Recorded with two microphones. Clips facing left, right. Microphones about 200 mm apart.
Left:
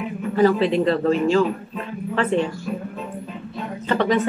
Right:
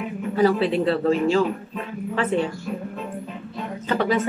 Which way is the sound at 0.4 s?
10° right (ahead or behind).